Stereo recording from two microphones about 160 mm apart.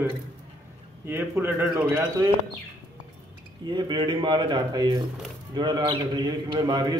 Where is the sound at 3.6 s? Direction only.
25° right (ahead or behind).